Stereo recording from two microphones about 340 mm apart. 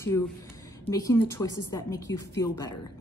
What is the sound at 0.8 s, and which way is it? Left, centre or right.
A woman's voice, centre.